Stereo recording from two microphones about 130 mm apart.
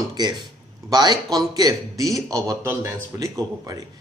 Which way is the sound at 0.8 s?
30° right (ahead or behind).